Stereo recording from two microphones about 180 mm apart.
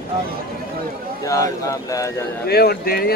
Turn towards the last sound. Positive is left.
turn(degrees=60)  # may be behind; listen again after turning